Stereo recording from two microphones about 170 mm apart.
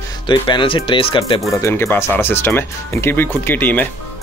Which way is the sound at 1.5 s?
15° left (ahead or behind).